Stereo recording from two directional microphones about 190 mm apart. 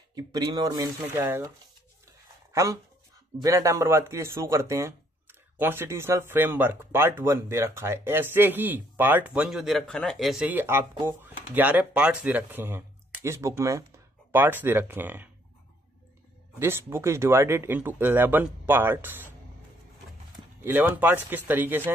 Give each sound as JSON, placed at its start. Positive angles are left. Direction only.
{"t": 0.1, "sound": "speech", "side_deg": -20}
{"t": 2.5, "sound": "speech", "side_deg": -15}
{"t": 16.5, "sound": "speech", "side_deg": -15}
{"t": 20.6, "sound": "speech", "side_deg": -10}